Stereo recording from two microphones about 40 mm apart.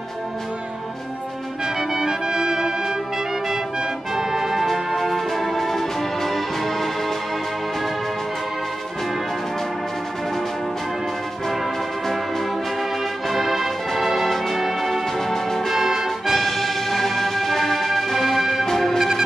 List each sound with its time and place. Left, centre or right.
1.8 s music: centre
4.1 s music: centre
13.3 s music: centre
15.1 s music: centre
15.7 s music: centre
18.9 s music: centre